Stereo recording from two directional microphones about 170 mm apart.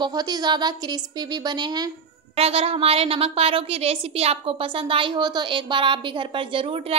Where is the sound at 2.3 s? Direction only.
35° right (ahead or behind).